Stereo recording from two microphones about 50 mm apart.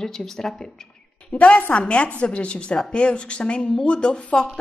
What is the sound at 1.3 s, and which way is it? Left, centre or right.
A woman's voice, left.